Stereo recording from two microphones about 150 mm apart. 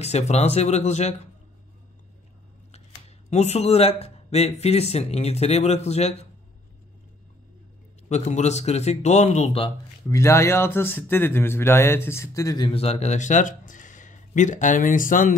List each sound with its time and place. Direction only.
0.0 s speech: 45° left (ahead or behind)
3.3 s speech: 45° left (ahead or behind)
8.1 s speech: 50° left (ahead or behind)
10.0 s speech: 20° left (ahead or behind)
12.7 s speech: 45° left (ahead or behind); by 15.3 s 65° left (ahead or behind)